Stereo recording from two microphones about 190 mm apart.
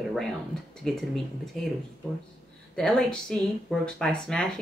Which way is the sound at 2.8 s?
5° left (ahead or behind).